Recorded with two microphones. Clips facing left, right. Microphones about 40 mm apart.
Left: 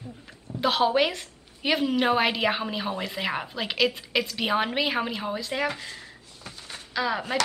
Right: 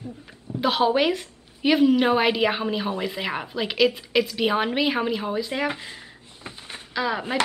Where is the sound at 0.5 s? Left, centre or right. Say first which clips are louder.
Right 2 dB; centre.